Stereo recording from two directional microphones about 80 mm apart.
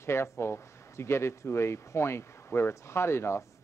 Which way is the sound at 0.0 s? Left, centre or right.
Left.